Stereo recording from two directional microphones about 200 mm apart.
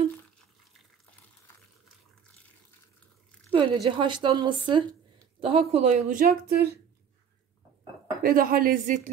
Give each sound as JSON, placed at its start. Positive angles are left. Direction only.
{"t": 3.5, "sound": "a woman's voice", "side_deg": -25}
{"t": 8.2, "sound": "a woman's voice", "side_deg": -45}